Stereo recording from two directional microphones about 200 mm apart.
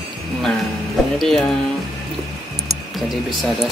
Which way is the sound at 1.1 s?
Centre (ahead or behind).